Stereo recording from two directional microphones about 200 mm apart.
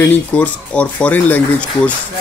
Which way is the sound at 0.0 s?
10° left (ahead or behind).